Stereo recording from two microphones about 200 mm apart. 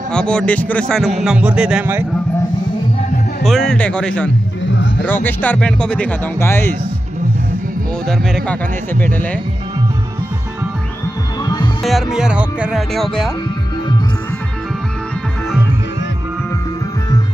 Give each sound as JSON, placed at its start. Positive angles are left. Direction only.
{"t": 0.1, "sound": "a man's voice", "side_deg": 5}
{"t": 3.4, "sound": "a man's voice", "side_deg": 0}
{"t": 4.6, "sound": "music", "side_deg": 65}
{"t": 5.0, "sound": "speech", "side_deg": 10}
{"t": 8.1, "sound": "speech", "side_deg": 10}
{"t": 11.4, "sound": "hum", "side_deg": 20}
{"t": 11.8, "sound": "a man's voice", "side_deg": 0}